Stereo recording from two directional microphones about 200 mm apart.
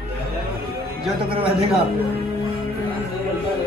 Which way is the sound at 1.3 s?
25° right (ahead or behind).